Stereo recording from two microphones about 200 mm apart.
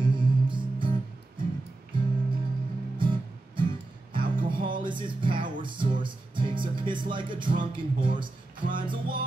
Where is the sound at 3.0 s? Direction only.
25° right (ahead or behind).